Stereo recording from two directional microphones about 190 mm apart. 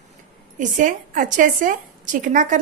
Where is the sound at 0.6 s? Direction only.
45° right (ahead or behind).